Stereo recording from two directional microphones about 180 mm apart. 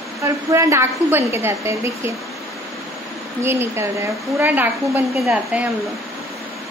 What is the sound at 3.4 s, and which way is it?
A woman's voice, 15° right (ahead or behind).